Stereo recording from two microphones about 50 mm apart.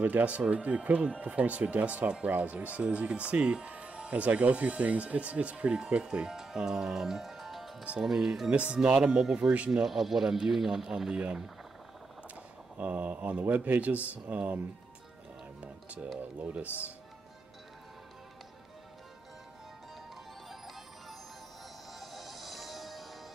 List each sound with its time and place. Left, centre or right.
0.0 s a man's voice: right; by 11.1 s centre
12.7 s speech: right
15.6 s music: right
16.2 s speech: right
22.0 s music: centre